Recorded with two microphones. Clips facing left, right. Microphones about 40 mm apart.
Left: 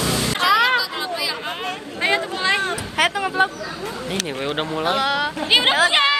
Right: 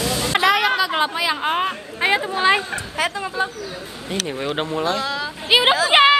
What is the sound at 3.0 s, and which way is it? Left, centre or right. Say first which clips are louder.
Speech: left 4 dB; left.